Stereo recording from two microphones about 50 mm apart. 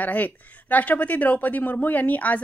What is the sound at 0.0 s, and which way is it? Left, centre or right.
A woman's voice, left.